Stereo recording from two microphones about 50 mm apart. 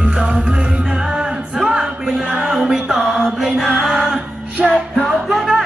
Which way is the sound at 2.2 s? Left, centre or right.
Right.